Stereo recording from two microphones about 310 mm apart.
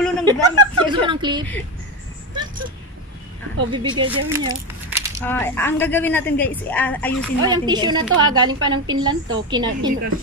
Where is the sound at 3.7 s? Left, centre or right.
Centre.